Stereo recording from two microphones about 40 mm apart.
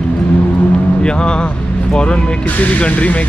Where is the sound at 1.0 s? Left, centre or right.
Left.